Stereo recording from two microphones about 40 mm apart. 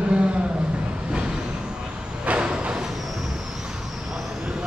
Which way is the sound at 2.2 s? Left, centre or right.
Right.